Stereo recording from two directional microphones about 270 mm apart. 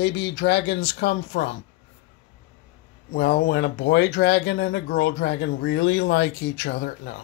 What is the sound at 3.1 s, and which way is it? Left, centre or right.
Speech, left.